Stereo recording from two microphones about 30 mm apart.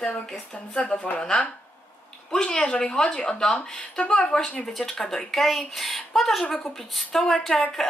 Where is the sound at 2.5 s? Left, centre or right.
Left.